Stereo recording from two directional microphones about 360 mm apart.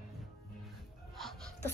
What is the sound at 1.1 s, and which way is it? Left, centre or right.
Music, centre.